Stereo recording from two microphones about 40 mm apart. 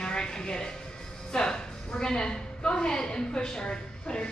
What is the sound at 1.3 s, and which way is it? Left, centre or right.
A woman's voice, centre.